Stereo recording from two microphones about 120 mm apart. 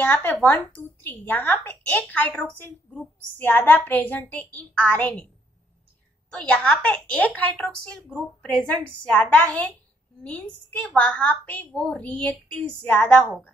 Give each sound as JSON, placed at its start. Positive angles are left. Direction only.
{"t": 0.0, "sound": "a woman's voice", "side_deg": 20}
{"t": 6.5, "sound": "a woman's voice", "side_deg": 10}